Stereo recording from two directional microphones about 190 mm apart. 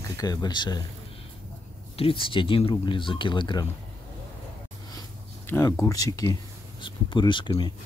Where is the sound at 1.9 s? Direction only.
30° left (ahead or behind).